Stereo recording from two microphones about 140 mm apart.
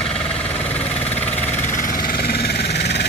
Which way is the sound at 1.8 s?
80° left.